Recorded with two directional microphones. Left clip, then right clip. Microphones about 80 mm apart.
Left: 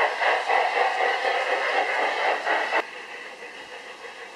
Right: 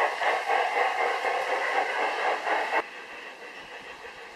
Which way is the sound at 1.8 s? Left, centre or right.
Left.